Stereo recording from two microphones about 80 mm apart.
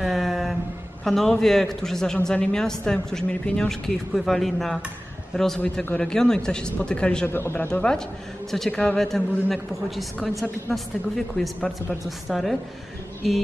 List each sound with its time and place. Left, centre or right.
0.0 s vehicle: centre
1.0 s a man's voice: centre
7.2 s speech: left
7.8 s a man's voice: centre